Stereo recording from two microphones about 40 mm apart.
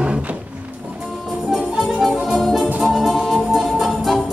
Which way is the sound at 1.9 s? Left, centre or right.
Centre.